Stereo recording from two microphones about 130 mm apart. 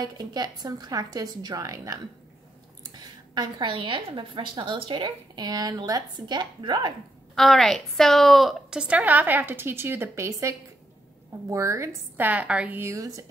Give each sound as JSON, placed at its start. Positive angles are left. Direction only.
{"t": 0.0, "sound": "a woman's voice", "side_deg": -30}
{"t": 7.3, "sound": "a woman's voice", "side_deg": 0}
{"t": 11.5, "sound": "speech", "side_deg": -20}